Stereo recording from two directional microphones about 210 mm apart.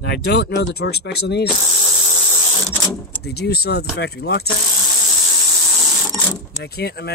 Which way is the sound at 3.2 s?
50° left (ahead or behind).